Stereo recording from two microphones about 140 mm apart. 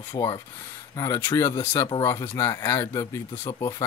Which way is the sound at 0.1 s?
30° left (ahead or behind).